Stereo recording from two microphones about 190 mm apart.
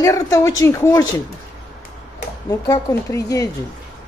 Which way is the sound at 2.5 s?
15° left (ahead or behind).